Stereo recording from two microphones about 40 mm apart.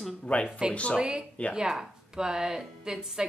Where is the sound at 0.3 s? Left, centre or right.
Left.